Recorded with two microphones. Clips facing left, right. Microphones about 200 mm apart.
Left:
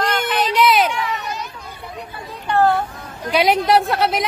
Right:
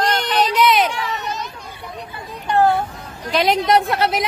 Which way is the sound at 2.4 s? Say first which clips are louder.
Even; 15° right (ahead or behind).